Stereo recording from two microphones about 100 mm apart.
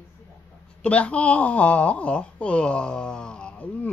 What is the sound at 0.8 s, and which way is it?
Speech, 15° left (ahead or behind).